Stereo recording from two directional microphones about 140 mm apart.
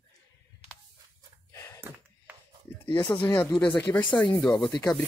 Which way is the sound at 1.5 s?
20° left (ahead or behind).